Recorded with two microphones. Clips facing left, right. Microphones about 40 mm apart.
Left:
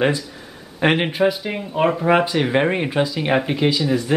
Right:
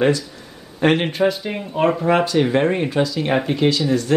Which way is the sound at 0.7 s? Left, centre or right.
Centre.